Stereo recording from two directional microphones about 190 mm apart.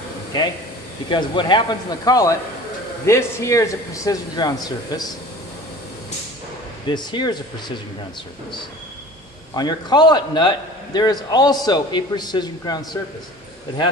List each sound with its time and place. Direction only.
1.0 s a man's voice: 25° left (ahead or behind)
6.9 s a man's voice: 25° left (ahead or behind)
9.5 s a man's voice: 20° left (ahead or behind)